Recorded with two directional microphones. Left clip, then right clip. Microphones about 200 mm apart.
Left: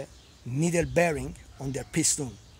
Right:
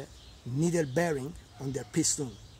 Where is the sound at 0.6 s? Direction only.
35° left (ahead or behind).